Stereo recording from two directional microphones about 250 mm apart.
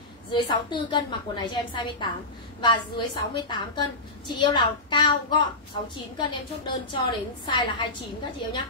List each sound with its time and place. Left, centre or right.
0.3 s a woman's voice: centre